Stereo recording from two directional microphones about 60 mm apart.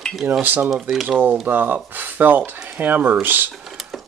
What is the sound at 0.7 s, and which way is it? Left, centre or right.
Speech, centre.